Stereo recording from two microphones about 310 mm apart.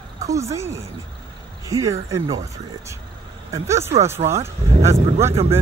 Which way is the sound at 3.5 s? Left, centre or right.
Centre.